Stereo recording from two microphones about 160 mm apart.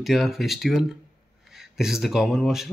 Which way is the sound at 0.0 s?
Centre (ahead or behind).